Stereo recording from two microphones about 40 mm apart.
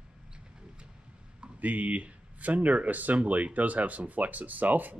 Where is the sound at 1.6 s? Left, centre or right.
Right.